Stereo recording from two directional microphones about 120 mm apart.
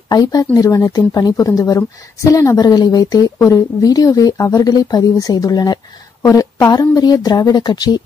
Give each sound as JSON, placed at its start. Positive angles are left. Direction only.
{"t": 0.1, "sound": "a woman's voice", "side_deg": 35}